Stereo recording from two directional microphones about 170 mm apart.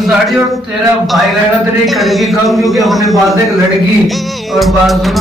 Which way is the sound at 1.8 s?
Centre (ahead or behind).